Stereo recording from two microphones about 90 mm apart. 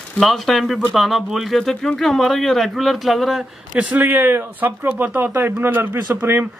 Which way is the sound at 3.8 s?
20° right (ahead or behind).